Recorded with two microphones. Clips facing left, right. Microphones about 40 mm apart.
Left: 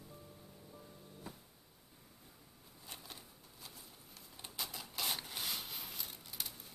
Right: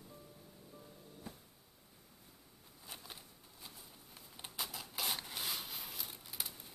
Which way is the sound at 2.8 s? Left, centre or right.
Centre.